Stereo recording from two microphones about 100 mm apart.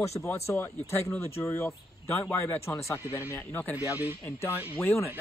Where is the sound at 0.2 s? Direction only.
30° left (ahead or behind).